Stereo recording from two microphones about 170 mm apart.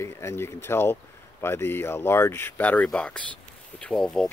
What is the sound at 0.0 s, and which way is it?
Speech, 15° left (ahead or behind).